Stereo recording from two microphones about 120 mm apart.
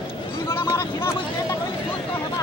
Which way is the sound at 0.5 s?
20° left (ahead or behind).